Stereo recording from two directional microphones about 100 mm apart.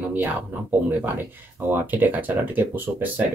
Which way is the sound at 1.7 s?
20° right (ahead or behind).